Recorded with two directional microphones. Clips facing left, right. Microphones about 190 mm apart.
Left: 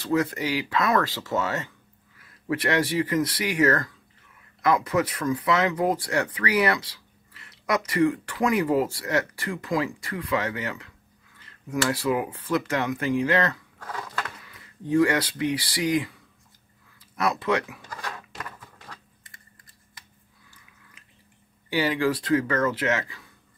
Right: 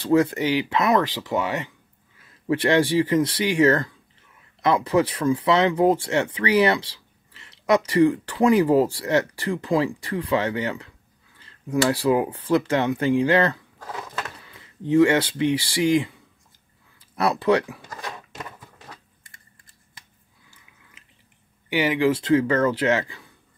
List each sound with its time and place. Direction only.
0.0 s speech: 30° right (ahead or behind)
2.1 s speech: 25° right (ahead or behind)
11.3 s a sound: 30° right (ahead or behind)
11.9 s speech: 30° right (ahead or behind)
17.1 s speech: 30° right (ahead or behind)
18.0 s a sound: 20° right (ahead or behind)
21.6 s speech: 20° right (ahead or behind)